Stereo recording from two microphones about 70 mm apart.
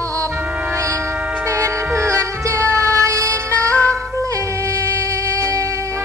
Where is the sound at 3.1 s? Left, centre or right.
Right.